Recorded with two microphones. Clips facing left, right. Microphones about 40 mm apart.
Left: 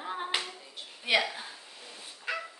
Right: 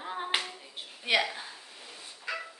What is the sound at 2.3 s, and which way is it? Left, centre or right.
Dog, left.